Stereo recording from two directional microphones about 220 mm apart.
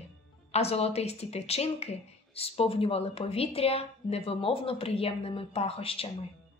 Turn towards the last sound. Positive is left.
turn(degrees=25)  # may be behind; listen again after turning